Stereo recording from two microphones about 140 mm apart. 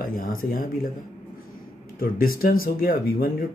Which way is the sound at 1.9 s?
90° left.